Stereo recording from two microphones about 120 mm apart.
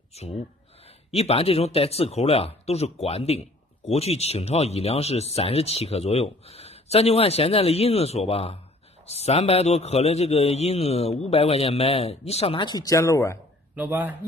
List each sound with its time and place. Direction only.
0.1 s speech: 60° left (ahead or behind)
12.5 s speech: 35° left (ahead or behind)
13.7 s speech: 15° right (ahead or behind)